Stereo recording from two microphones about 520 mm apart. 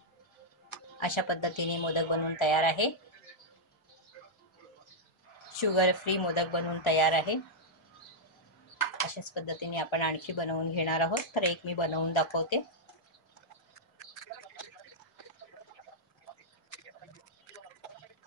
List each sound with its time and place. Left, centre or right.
0.9 s speech: left
5.6 s speech: left
9.3 s speech: left